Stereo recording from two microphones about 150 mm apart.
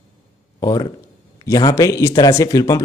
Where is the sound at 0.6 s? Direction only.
25° left (ahead or behind).